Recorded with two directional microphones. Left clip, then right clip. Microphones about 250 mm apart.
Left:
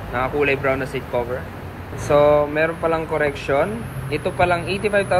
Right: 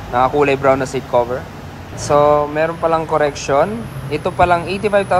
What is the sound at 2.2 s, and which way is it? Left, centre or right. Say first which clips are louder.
A man's voice: right 2 dB; centre.